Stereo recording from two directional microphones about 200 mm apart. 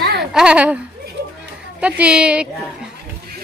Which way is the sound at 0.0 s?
55° right (ahead or behind).